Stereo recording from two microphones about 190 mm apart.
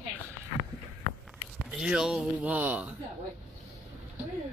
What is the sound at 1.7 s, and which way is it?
Speech, 5° right (ahead or behind).